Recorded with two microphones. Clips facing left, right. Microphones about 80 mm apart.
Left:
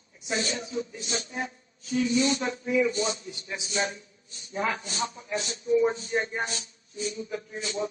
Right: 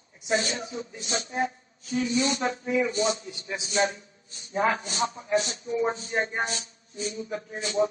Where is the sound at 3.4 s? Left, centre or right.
Right.